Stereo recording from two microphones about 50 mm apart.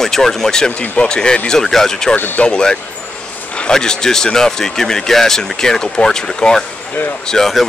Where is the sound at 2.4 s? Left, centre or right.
Centre.